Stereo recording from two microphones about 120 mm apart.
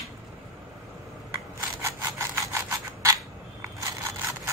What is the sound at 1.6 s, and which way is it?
Sawing, 25° right (ahead or behind).